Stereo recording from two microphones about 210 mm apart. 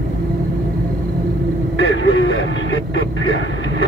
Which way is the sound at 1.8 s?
65° left (ahead or behind).